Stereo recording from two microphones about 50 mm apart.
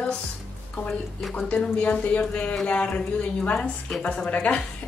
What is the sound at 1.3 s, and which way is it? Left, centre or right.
Speech, left.